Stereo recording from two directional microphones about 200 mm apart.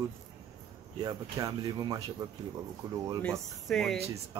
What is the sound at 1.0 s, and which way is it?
Speech, 20° right (ahead or behind).